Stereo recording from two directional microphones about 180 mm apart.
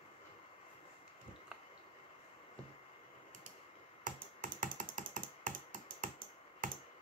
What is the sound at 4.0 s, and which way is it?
Computer keyboard, 45° right (ahead or behind).